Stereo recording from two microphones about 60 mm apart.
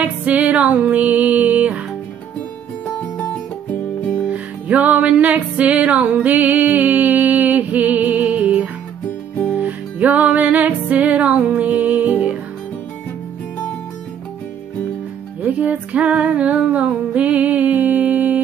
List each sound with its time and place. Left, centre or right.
0.0 s music: right
4.3 s music: right
15.4 s music: right